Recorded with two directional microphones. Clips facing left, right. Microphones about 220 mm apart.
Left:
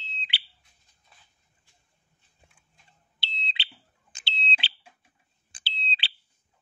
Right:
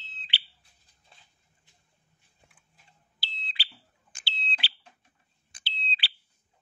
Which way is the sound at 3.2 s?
25° left (ahead or behind).